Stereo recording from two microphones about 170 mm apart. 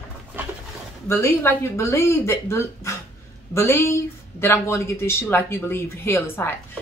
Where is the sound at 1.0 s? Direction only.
15° left (ahead or behind).